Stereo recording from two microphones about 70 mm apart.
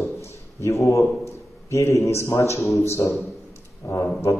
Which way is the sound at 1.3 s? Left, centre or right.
Left.